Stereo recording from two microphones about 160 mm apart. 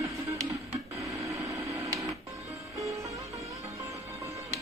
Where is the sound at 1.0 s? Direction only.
20° right (ahead or behind).